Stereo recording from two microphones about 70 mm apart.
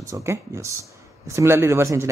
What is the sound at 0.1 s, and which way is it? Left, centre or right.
Speech, right.